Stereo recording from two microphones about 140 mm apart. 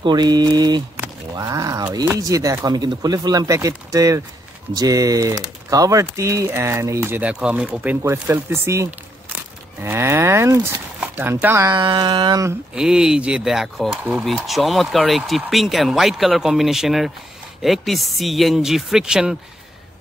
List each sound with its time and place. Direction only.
0.0 s speech: 30° right (ahead or behind)
11.7 s a sound: 30° right (ahead or behind)
12.7 s speech: 5° right (ahead or behind)